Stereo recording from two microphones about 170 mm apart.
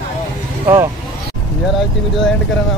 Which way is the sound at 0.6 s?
20° right (ahead or behind).